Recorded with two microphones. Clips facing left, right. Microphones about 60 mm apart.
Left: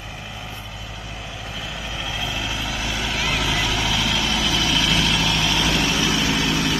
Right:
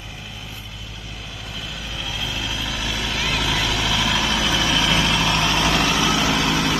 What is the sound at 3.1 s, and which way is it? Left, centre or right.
Vehicle, centre.